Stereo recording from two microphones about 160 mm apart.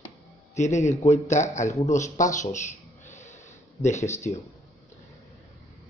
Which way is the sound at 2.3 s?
50° left (ahead or behind).